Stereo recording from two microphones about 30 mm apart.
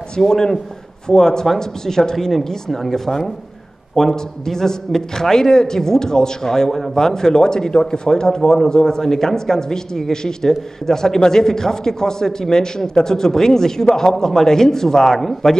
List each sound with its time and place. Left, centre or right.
0.2 s a man's voice: centre
15.0 s speech: centre